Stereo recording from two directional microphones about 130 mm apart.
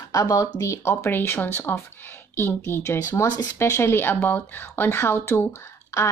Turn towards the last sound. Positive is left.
turn(degrees=20)  # may be behind; listen again after turning